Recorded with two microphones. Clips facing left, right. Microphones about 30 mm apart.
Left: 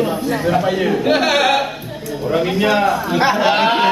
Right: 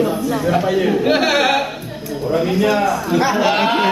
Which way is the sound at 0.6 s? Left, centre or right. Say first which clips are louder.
Right 1 dB; centre.